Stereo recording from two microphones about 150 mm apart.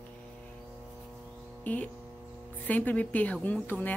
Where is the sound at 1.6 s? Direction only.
10° left (ahead or behind).